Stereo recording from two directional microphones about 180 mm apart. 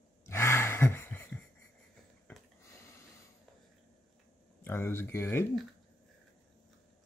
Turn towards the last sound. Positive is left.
turn(degrees=15)  # may be behind; listen again after turning